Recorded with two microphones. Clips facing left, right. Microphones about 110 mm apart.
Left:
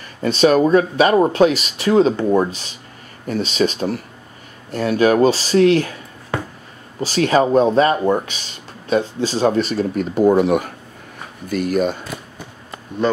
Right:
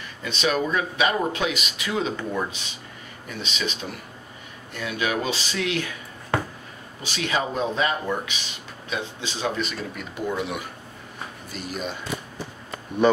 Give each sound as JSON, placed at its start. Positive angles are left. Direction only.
{"t": 0.2, "sound": "speech", "side_deg": 40}
{"t": 7.0, "sound": "speech", "side_deg": 40}